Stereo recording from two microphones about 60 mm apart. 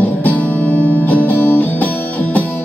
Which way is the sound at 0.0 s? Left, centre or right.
Left.